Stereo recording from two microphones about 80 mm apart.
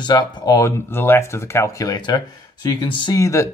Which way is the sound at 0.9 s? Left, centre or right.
Left.